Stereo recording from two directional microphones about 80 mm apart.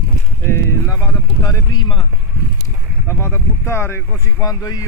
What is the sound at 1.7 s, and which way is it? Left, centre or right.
Speech, left.